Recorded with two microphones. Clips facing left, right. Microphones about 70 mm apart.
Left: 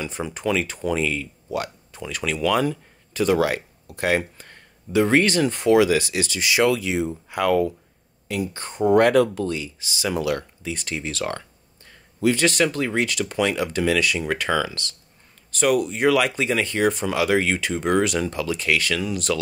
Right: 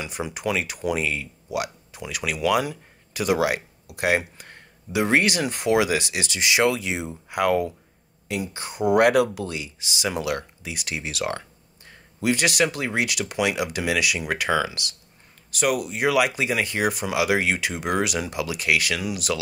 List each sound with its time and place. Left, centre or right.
0.0 s speech: centre
8.6 s speech: centre